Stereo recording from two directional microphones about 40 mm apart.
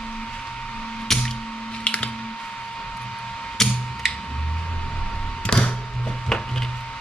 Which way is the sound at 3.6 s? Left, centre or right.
Centre.